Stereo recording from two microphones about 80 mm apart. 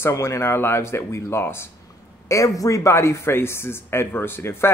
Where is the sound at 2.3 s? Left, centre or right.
Left.